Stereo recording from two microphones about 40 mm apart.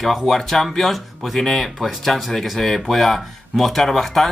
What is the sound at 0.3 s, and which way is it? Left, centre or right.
Speech, centre.